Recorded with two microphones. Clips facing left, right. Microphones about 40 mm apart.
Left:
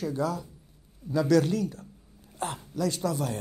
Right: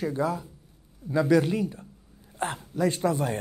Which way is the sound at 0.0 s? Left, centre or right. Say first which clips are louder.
Right 2 dB; right.